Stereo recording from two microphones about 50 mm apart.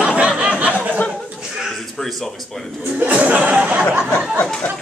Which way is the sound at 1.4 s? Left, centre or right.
Centre.